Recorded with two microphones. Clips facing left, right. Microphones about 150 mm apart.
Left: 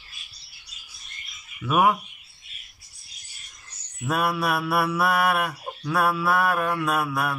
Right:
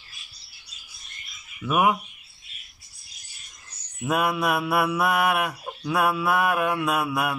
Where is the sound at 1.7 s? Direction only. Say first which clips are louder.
Left 1 dB; 10° right (ahead or behind).